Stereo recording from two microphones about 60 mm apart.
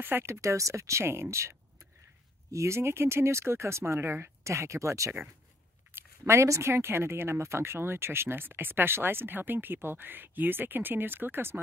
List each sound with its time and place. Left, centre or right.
0.2 s speech: right
1.0 s speech: right